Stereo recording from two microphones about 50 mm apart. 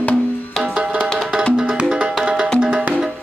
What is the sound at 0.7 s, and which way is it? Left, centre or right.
Music, right.